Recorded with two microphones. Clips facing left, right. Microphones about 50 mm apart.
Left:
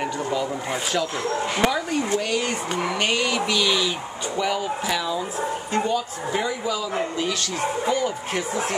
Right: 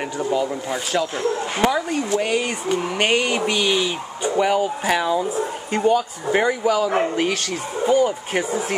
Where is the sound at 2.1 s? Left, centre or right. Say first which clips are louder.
Right 3 dB; centre.